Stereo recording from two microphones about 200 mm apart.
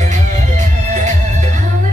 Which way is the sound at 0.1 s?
40° right (ahead or behind).